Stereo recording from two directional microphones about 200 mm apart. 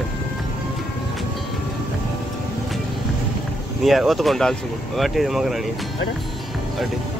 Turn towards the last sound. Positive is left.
turn(degrees=0)  # may be behind; listen again after turning